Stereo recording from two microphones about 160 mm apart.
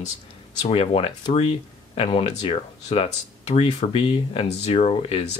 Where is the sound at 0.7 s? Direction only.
35° left (ahead or behind).